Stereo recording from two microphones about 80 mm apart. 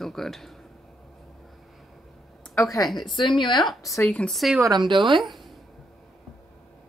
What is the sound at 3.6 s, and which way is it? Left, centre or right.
Speech, centre.